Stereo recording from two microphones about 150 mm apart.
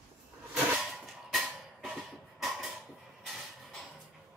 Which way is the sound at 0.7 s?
Centre (ahead or behind).